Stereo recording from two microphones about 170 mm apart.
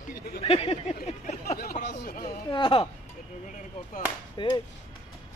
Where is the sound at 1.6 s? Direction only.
65° left (ahead or behind).